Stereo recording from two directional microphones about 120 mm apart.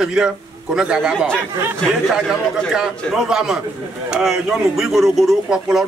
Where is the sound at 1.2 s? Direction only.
10° left (ahead or behind).